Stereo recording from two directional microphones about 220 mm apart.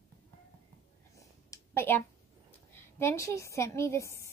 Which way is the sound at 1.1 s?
15° left (ahead or behind).